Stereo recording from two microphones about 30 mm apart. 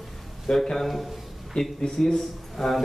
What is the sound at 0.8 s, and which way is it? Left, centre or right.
Speech, centre.